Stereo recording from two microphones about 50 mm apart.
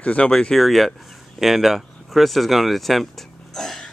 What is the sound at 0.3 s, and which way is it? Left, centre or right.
Speech, centre.